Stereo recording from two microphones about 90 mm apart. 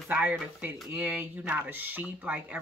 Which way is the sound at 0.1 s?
15° right (ahead or behind).